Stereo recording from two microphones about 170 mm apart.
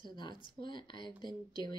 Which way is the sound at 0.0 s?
25° left (ahead or behind).